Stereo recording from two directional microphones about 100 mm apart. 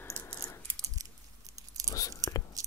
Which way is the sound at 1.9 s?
35° left (ahead or behind).